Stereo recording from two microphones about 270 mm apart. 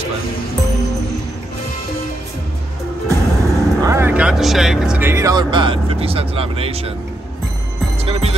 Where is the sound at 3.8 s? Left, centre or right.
Centre.